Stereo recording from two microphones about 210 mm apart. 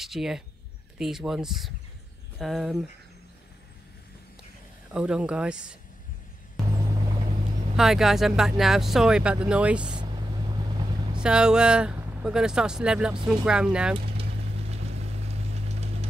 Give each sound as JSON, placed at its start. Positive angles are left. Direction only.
{"t": 0.0, "sound": "speech", "side_deg": 0}
{"t": 4.9, "sound": "speech", "side_deg": -5}
{"t": 6.6, "sound": "vehicle", "side_deg": 0}
{"t": 7.7, "sound": "speech", "side_deg": 0}
{"t": 11.1, "sound": "speech", "side_deg": -5}
{"t": 14.7, "sound": "vehicle", "side_deg": -30}